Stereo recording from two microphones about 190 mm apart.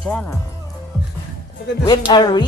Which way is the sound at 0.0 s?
5° left (ahead or behind).